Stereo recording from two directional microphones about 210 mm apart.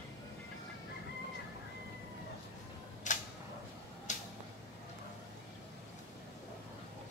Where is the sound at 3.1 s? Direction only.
35° left (ahead or behind).